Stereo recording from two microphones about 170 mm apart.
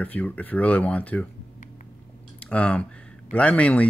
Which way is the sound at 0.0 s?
10° left (ahead or behind).